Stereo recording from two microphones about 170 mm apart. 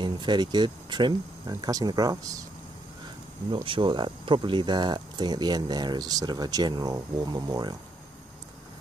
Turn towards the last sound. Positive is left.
turn(degrees=-25)  # may be behind; listen again after turning